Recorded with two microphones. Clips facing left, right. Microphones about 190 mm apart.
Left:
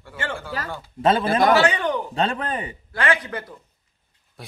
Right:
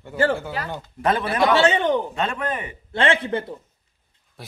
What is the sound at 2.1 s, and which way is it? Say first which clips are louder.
Speech: left 1 dB; 35° left (ahead or behind).